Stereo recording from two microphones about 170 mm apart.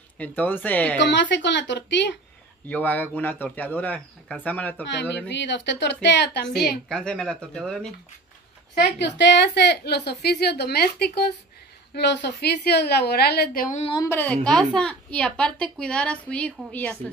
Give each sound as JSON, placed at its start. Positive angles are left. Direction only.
{"t": 0.2, "sound": "speech", "side_deg": 10}
{"t": 0.9, "sound": "speech", "side_deg": 90}
{"t": 2.7, "sound": "speech", "side_deg": 10}
{"t": 5.3, "sound": "a woman's voice", "side_deg": 90}
{"t": 6.9, "sound": "a woman's voice", "side_deg": 5}
{"t": 8.7, "sound": "a woman's voice", "side_deg": 80}
{"t": 11.9, "sound": "a woman's voice", "side_deg": 90}
{"t": 13.7, "sound": "speech", "side_deg": 30}
{"t": 14.0, "sound": "a woman's voice", "side_deg": 10}